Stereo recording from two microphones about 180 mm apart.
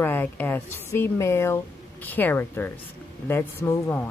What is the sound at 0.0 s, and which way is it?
Speech, 10° left (ahead or behind).